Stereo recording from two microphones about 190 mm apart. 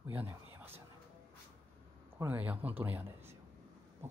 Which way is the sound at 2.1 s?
10° right (ahead or behind).